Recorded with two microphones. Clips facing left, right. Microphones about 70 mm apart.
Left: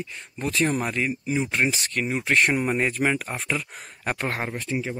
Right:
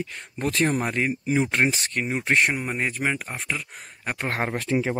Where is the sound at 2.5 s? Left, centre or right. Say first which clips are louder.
Left 4 dB; centre.